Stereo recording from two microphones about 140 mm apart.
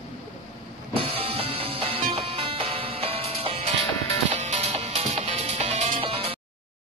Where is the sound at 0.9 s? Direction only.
40° right (ahead or behind).